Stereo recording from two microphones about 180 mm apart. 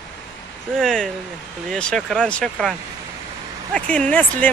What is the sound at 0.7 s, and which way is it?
Speech, centre (ahead or behind).